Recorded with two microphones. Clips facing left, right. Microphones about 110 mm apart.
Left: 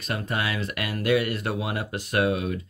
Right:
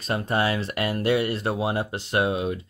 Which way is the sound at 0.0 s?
30° right (ahead or behind).